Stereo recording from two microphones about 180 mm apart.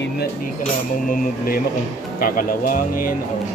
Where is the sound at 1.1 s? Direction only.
55° left (ahead or behind).